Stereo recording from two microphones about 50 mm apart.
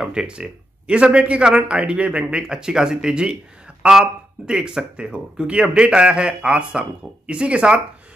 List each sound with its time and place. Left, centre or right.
0.0 s speech: centre